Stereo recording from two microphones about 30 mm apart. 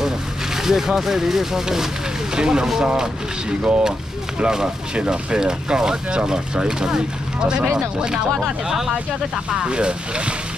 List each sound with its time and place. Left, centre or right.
0.6 s speech: centre
4.9 s speech: right
5.4 s speech: right
8.6 s speech: centre
9.5 s speech: right